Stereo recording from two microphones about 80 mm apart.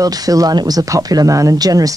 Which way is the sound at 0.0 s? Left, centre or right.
Right.